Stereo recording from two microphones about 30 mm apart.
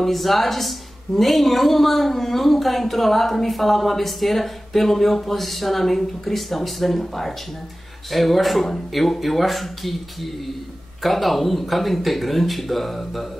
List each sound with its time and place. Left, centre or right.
0.0 s a woman's voice: centre